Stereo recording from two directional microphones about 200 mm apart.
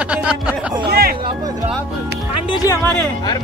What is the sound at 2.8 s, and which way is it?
Speech, 5° left (ahead or behind).